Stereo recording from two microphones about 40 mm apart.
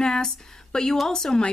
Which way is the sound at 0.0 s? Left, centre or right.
Centre.